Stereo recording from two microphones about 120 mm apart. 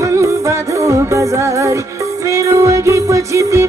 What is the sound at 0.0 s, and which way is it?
Music, 25° right (ahead or behind).